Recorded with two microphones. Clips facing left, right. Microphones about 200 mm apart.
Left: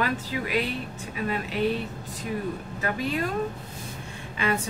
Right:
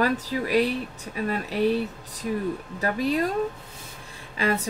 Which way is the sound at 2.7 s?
35° right (ahead or behind).